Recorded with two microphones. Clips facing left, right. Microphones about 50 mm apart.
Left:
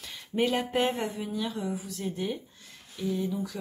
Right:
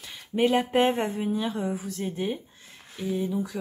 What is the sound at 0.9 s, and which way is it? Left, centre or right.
A woman's voice, right.